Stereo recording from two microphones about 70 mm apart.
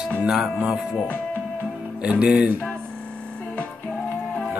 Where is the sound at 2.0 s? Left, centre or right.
Centre.